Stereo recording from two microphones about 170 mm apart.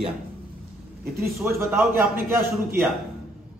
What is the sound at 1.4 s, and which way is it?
Speech, 15° right (ahead or behind).